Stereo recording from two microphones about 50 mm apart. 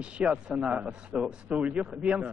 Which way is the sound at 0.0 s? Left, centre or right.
Right.